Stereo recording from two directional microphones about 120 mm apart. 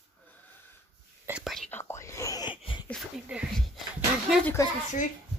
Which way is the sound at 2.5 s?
45° left (ahead or behind).